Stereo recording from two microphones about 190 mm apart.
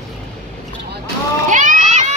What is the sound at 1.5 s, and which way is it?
Splash, 45° right (ahead or behind).